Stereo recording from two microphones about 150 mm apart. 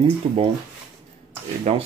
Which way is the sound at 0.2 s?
45° right (ahead or behind).